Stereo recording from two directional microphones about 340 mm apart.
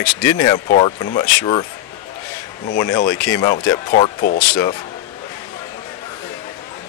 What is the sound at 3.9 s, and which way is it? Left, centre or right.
Speech, left.